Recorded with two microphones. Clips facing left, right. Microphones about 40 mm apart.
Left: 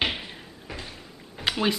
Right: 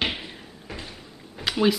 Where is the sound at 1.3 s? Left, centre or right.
Centre.